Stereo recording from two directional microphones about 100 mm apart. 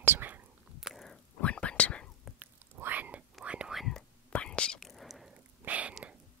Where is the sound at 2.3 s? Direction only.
15° right (ahead or behind); by 4.0 s centre (ahead or behind).